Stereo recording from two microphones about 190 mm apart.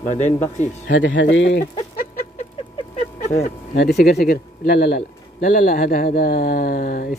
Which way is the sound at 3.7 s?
55° left (ahead or behind).